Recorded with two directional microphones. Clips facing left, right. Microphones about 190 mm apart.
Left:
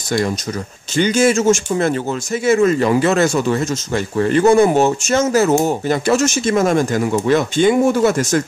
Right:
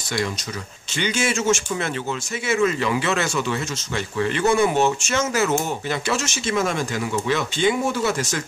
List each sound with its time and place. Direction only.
0.9 s speech: 40° left (ahead or behind)